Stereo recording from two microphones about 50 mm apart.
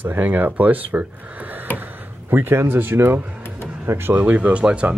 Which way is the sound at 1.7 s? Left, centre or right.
Right.